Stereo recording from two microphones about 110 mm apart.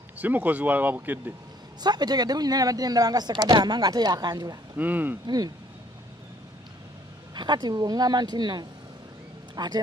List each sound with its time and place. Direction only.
0.2 s speech: 15° right (ahead or behind)
1.8 s speech: 40° right (ahead or behind)
4.7 s speech: 15° right (ahead or behind)
5.2 s speech: 35° right (ahead or behind)
7.3 s speech: 40° right (ahead or behind)